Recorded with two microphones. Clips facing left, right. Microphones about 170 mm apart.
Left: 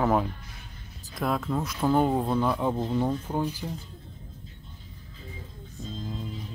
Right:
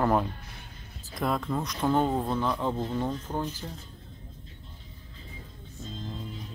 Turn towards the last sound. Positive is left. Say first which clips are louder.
# left 3 dB
turn(degrees=0)  # may be behind; listen again after turning